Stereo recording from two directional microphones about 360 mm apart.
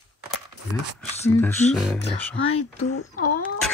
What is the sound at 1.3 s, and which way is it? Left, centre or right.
Speech, centre.